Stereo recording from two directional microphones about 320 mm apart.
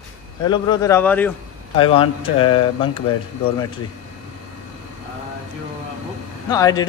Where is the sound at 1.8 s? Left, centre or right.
Centre.